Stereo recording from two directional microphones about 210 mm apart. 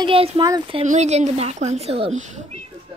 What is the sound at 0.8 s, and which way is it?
A woman's voice, 35° right (ahead or behind).